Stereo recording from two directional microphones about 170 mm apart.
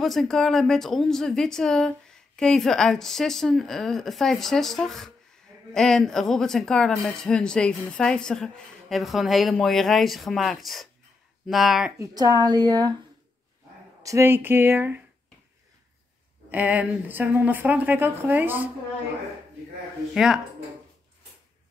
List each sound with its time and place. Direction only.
0.0 s speech: centre (ahead or behind)
12.0 s a woman's voice: 20° right (ahead or behind)
14.0 s speech: 15° right (ahead or behind)
16.4 s speech: 10° right (ahead or behind)